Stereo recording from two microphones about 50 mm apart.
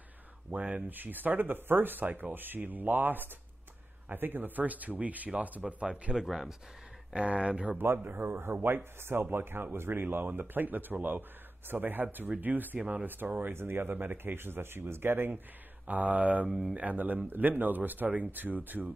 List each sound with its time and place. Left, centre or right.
0.5 s speech: right
0.8 s speech: right
6.1 s speech: centre
7.1 s speech: right
7.7 s speech: right
12.7 s speech: right
13.0 s speech: right
15.9 s speech: right
16.4 s speech: centre
16.7 s speech: right